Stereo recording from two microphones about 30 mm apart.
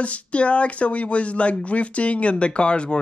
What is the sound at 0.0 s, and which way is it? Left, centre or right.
Speech, left.